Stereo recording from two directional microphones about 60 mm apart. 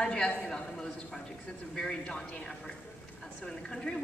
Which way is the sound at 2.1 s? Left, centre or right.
Left.